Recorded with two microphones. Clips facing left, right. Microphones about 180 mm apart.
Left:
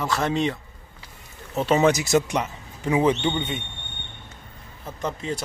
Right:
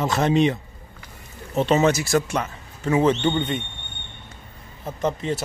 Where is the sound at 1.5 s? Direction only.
10° left (ahead or behind).